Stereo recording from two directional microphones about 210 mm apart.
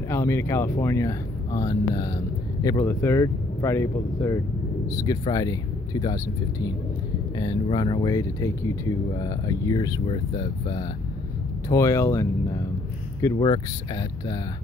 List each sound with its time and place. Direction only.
0.1 s speech: 10° left (ahead or behind)
7.3 s speech: 20° left (ahead or behind)